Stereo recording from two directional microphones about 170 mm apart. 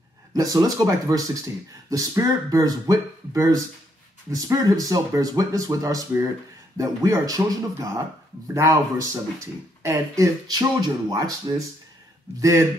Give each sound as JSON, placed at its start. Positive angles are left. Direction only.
{"t": 0.3, "sound": "speech", "side_deg": -20}